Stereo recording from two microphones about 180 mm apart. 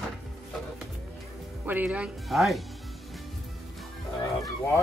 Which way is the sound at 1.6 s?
10° right (ahead or behind).